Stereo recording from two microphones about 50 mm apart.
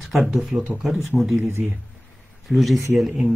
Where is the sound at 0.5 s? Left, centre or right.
Centre.